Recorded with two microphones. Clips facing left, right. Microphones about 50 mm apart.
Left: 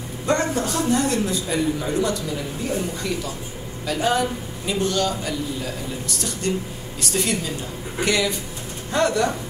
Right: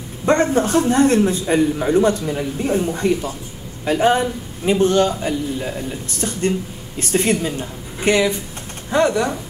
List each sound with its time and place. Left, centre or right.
0.2 s a man's voice: right
7.0 s a man's voice: right
8.9 s speech: centre